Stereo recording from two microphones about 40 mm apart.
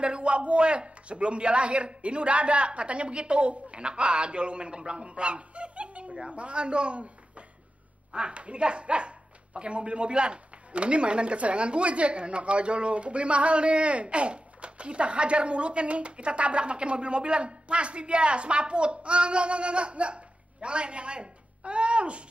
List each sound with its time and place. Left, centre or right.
0.0 s speech: right